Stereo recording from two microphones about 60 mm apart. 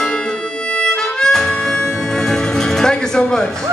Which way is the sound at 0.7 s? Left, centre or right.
Centre.